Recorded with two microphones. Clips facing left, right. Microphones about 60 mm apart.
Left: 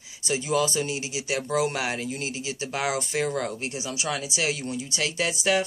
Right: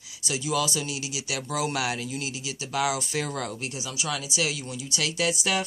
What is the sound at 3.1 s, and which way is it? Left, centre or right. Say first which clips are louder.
Speech: left 3 dB; centre.